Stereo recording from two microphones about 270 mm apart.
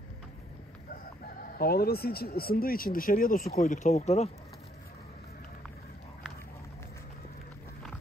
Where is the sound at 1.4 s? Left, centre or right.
Left.